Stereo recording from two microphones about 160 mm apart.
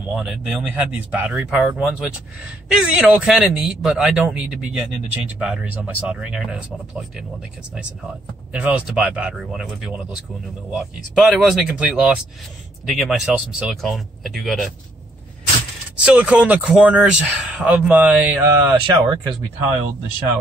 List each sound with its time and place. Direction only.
0.1 s a man's voice: 5° right (ahead or behind)
8.5 s a man's voice: 10° right (ahead or behind)
16.0 s speech: 10° right (ahead or behind)
18.8 s speech: 25° right (ahead or behind)